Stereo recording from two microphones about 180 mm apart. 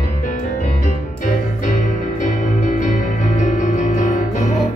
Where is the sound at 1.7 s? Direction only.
45° left (ahead or behind).